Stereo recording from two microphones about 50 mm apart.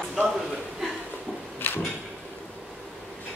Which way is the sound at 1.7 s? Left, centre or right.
Left.